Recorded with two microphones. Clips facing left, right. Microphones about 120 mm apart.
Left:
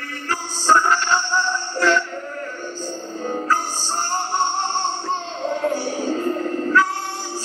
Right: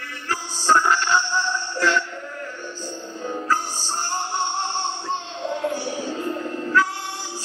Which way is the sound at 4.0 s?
50° left (ahead or behind).